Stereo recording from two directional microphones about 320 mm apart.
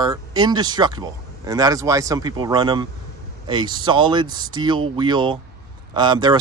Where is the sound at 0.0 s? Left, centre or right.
Centre.